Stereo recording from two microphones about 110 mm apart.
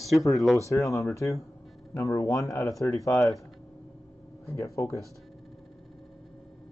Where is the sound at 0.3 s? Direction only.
Centre (ahead or behind).